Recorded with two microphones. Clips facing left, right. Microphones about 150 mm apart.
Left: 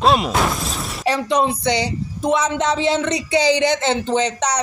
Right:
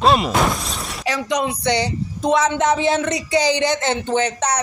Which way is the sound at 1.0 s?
30° left (ahead or behind).